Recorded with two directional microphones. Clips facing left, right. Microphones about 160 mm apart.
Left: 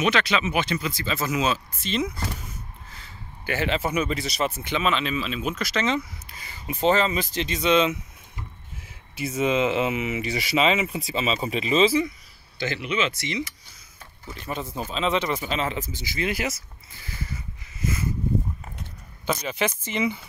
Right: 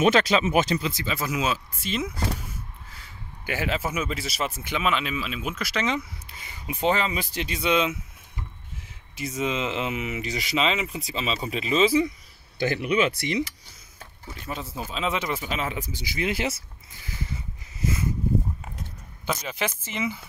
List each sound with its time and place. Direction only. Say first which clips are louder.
0.0 s speech: right 3 dB; 40° right (ahead or behind)
0.7 s speech: right 1 dB; 25° right (ahead or behind)
1.0 s speech: left 2 dB; 10° right (ahead or behind)
3.4 s speech: left 2 dB; 5° right (ahead or behind)
9.4 s speech: left 5 dB; 5° left (ahead or behind)
12.6 s speech: right 3 dB; 45° right (ahead or behind)
14.4 s speech: left 3 dB; 5° right (ahead or behind); by 16.6 s 25° right (ahead or behind)
17.0 s speech: right 1 dB; 15° right (ahead or behind)
19.2 s speech: left 3 dB; 5° right (ahead or behind)